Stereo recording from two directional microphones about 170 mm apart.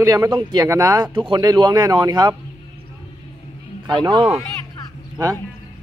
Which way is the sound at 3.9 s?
25° right (ahead or behind).